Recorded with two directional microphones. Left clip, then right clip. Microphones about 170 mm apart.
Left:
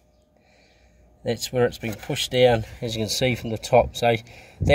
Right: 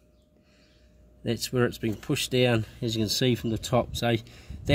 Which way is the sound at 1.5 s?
5° left (ahead or behind).